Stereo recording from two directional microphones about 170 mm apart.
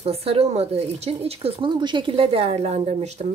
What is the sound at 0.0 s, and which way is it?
Speech, 35° right (ahead or behind).